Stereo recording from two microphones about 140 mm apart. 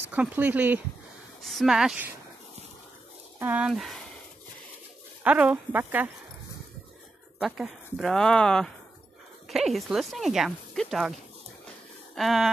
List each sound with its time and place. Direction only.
0.1 s speech: 10° right (ahead or behind)
1.4 s speech: centre (ahead or behind)
3.3 s speech: 10° right (ahead or behind)
5.2 s speech: 10° right (ahead or behind)
7.3 s speech: 5° right (ahead or behind)
12.2 s speech: centre (ahead or behind)